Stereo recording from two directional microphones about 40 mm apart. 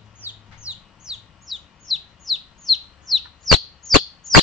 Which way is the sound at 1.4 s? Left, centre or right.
Centre.